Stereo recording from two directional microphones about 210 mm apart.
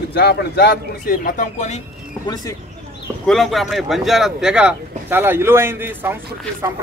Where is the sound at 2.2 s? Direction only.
20° left (ahead or behind).